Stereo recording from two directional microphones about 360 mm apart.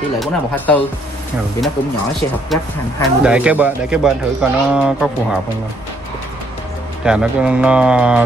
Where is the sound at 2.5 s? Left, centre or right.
Centre.